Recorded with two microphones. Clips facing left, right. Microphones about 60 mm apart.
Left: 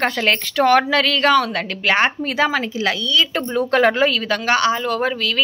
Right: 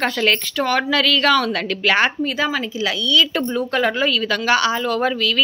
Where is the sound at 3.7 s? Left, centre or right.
Left.